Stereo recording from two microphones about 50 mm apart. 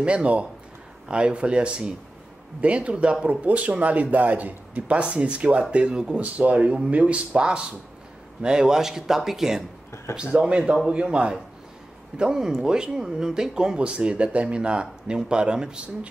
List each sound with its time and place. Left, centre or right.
0.0 s speech: right
6.2 s speech: right; by 9.7 s centre
10.3 s speech: right